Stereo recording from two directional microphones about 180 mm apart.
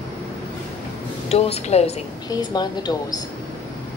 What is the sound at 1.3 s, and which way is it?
Speech, 35° left (ahead or behind).